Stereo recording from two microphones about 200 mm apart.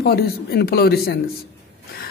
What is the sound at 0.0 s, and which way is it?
Speech, 50° left (ahead or behind).